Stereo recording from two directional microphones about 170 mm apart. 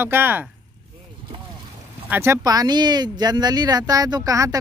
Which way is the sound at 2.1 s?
15° right (ahead or behind).